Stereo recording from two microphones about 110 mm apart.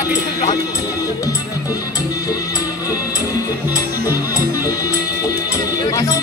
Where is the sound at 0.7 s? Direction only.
30° left (ahead or behind).